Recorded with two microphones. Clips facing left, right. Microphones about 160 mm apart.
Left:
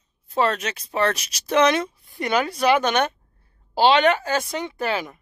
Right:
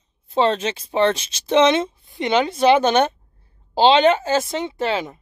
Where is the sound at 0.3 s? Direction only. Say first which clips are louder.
Right 4 dB; 25° right (ahead or behind).